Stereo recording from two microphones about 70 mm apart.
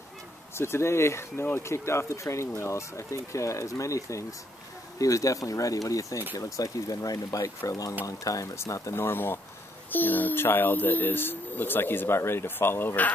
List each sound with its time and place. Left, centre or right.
0.6 s speech: left
8.9 s speech: left